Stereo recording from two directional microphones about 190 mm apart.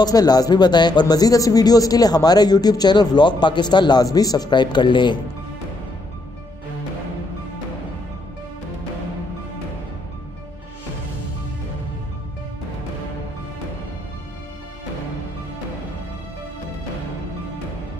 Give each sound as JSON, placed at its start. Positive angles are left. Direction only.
{"t": 0.0, "sound": "speech", "side_deg": 20}